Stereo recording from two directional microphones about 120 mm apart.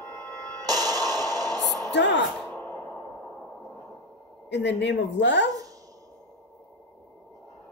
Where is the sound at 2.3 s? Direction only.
10° left (ahead or behind).